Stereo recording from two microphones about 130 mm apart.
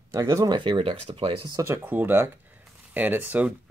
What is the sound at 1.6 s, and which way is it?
Speech, 20° right (ahead or behind).